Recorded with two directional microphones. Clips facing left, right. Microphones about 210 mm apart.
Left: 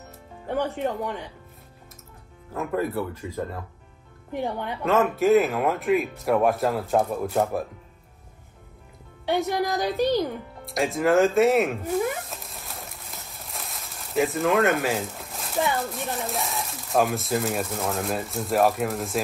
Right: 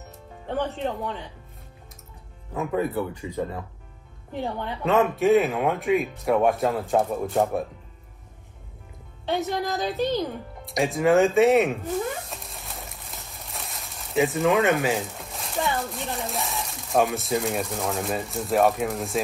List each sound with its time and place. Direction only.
0.5 s speech: 10° left (ahead or behind)
2.5 s speech: centre (ahead or behind)
4.3 s speech: 15° left (ahead or behind)
4.8 s speech: centre (ahead or behind)
9.4 s speech: centre (ahead or behind)
12.3 s a sound: centre (ahead or behind)